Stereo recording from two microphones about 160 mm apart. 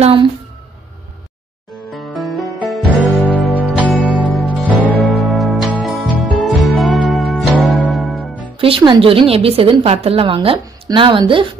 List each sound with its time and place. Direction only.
0.0 s a woman's voice: 35° right (ahead or behind)
1.9 s music: centre (ahead or behind)
8.5 s a woman's voice: 35° right (ahead or behind)